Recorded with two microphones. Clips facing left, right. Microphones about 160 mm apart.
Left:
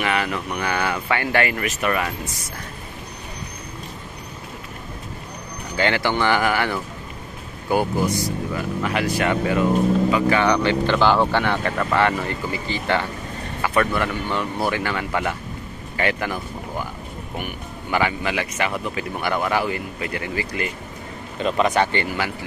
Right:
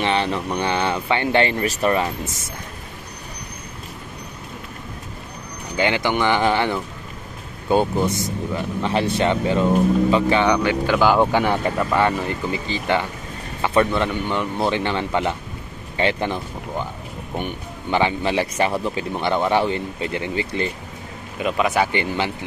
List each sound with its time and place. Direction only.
0.0 s speech: 30° right (ahead or behind)
5.8 s speech: 15° right (ahead or behind)
10.5 s speech: 10° right (ahead or behind); by 20.7 s 25° right (ahead or behind)
21.4 s a man's voice: 5° right (ahead or behind)
21.9 s speech: 20° right (ahead or behind)